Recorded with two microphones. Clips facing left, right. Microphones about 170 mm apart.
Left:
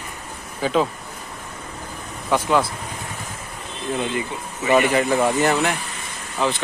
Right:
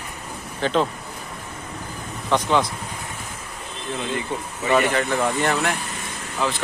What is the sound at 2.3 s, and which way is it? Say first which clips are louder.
Speech: left 1 dB; 5° left (ahead or behind).